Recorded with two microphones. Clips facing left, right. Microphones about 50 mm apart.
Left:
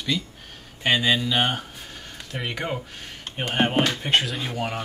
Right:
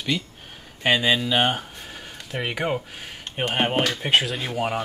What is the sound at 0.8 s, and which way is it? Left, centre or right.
Speech, centre.